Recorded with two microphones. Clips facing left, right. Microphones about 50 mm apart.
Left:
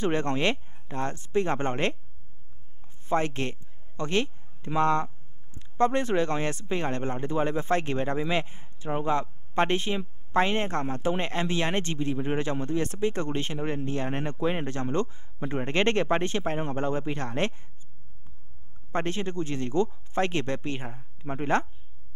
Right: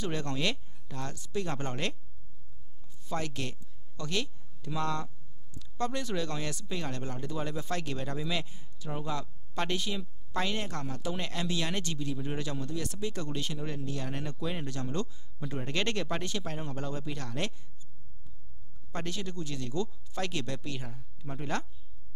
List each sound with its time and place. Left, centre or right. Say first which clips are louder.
0.0 s speech: left 7 dB; left
3.1 s speech: left 8 dB; left
18.9 s speech: left 8 dB; left